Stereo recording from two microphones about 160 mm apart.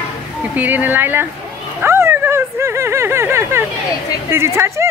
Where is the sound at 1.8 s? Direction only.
15° right (ahead or behind).